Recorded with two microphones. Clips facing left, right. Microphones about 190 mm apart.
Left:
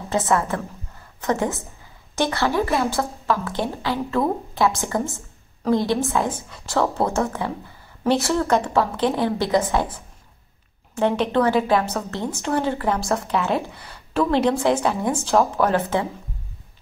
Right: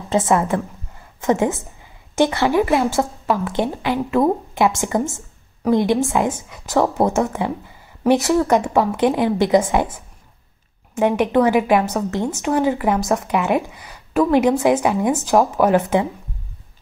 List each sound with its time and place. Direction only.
0.1 s a woman's voice: 15° right (ahead or behind)
11.0 s speech: 15° right (ahead or behind)